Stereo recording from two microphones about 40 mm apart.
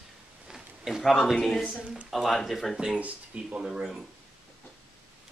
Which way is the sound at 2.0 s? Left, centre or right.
Centre.